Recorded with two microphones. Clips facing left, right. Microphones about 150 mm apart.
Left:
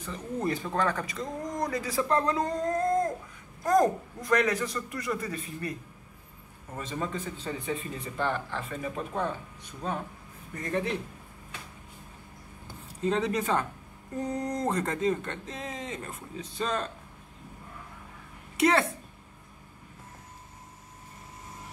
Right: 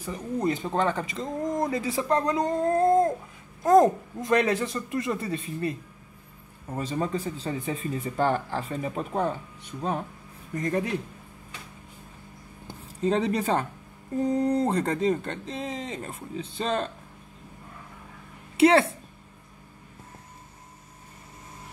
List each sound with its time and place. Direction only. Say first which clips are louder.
0.0 s speech: right 4 dB; 10° right (ahead or behind)
2.5 s speech: right 9 dB; 25° right (ahead or behind)
13.0 s speech: right 3 dB; 35° right (ahead or behind)
18.6 s speech: right 6 dB; 30° right (ahead or behind)